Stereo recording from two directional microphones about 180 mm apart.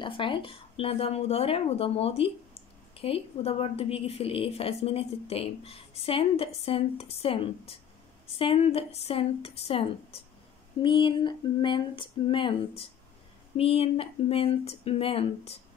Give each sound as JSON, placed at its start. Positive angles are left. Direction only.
{"t": 0.0, "sound": "a woman's voice", "side_deg": 30}
{"t": 10.8, "sound": "a sound", "side_deg": 25}
{"t": 13.6, "sound": "a woman's voice", "side_deg": 35}